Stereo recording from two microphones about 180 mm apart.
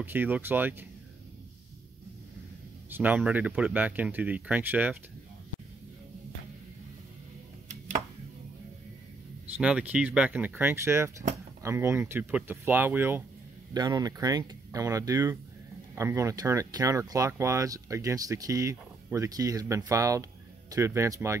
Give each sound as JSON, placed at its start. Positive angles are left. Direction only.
{"t": 0.0, "sound": "speech", "side_deg": -10}
{"t": 2.9, "sound": "speech", "side_deg": -10}
{"t": 9.6, "sound": "speech", "side_deg": -5}